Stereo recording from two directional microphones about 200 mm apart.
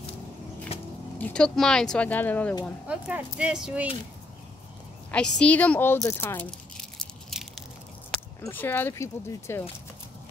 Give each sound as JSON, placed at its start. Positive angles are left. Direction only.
{"t": 0.7, "sound": "a sound", "side_deg": 30}
{"t": 1.1, "sound": "speech", "side_deg": 5}
{"t": 2.9, "sound": "speech", "side_deg": -5}
{"t": 5.1, "sound": "speech", "side_deg": 5}